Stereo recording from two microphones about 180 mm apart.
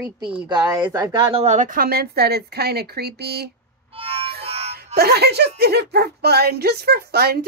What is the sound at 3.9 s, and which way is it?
Music, 30° right (ahead or behind).